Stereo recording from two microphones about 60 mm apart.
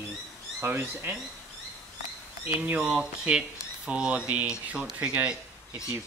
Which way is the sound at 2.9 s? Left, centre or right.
Centre.